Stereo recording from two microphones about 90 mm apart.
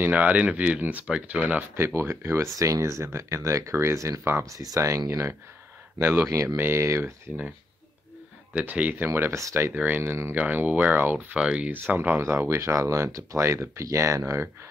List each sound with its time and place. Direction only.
0.0 s speech: 15° right (ahead or behind)
2.0 s speech: 30° right (ahead or behind)
4.6 s speech: 40° right (ahead or behind)
5.9 s speech: 25° right (ahead or behind)
8.5 s speech: 15° right (ahead or behind); by 9.7 s 35° right (ahead or behind)
9.7 s speech: 20° right (ahead or behind)
10.3 s speech: 15° right (ahead or behind)
12.2 s speech: 30° right (ahead or behind)